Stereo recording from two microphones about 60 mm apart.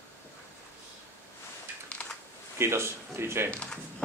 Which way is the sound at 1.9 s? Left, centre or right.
Centre.